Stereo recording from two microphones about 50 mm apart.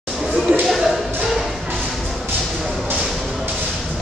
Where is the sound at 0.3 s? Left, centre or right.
Right.